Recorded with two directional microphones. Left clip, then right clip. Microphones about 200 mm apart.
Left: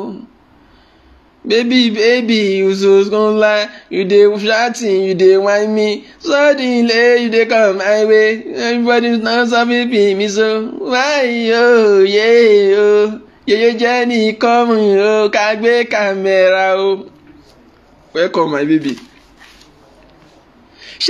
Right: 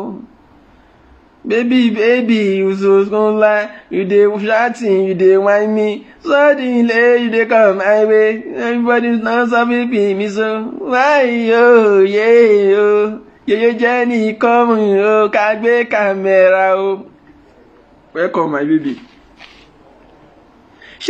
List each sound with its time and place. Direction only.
1.5 s speech: 20° left (ahead or behind)
18.1 s a man's voice: 30° left (ahead or behind)